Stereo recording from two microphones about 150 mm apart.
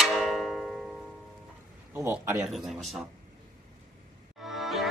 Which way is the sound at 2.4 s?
Centre (ahead or behind).